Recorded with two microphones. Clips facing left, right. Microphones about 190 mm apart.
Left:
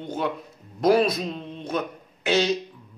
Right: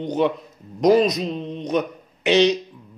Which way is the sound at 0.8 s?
15° right (ahead or behind).